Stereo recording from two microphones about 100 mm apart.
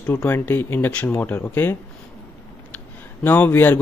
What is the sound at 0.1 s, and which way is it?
Speech, 25° left (ahead or behind).